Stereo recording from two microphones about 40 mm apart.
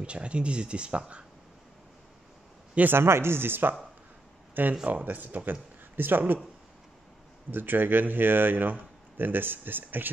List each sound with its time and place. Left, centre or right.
0.0 s speech: right
2.9 s speech: right
4.8 s speech: right
7.5 s speech: right